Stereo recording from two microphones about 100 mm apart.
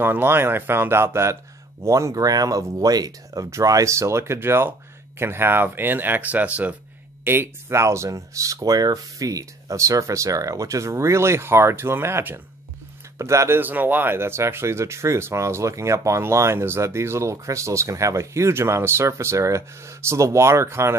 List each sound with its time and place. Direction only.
0.0 s speech: 20° right (ahead or behind)
7.2 s speech: 25° right (ahead or behind)